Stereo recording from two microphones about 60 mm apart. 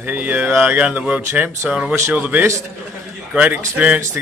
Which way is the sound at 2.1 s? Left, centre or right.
Right.